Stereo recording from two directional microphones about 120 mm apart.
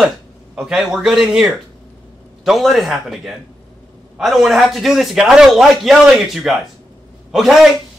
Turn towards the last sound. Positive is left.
turn(degrees=-5)  # may be behind; listen again after turning